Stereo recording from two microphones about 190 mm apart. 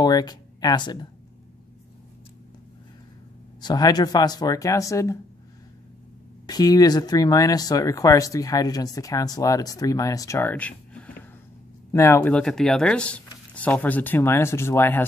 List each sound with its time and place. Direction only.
0.0 s a sound: 20° left (ahead or behind)
3.6 s speech: 20° left (ahead or behind)
6.4 s speech: 20° left (ahead or behind)